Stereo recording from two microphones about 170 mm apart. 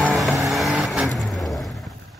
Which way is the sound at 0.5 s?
Centre (ahead or behind).